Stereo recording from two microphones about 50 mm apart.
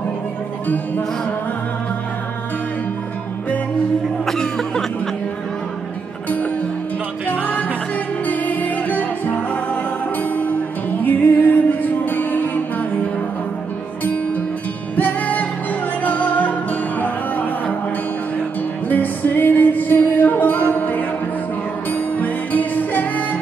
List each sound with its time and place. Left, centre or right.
4.3 s cough: centre
6.2 s music: left
18.9 s music: left